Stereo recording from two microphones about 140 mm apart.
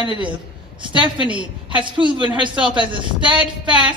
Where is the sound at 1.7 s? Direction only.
35° right (ahead or behind).